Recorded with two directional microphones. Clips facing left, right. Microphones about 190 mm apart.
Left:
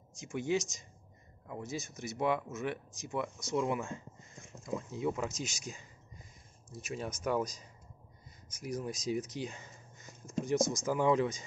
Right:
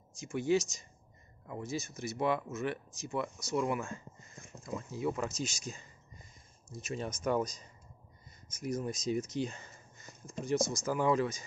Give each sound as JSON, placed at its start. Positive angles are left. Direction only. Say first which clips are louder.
{"t": 0.1, "sound": "speech", "louder": "right 3 dB", "side_deg": 20}
{"t": 7.2, "sound": "speech", "louder": "right 1 dB", "side_deg": 5}